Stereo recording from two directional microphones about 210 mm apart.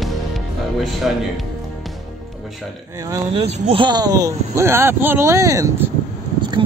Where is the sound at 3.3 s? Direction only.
30° right (ahead or behind).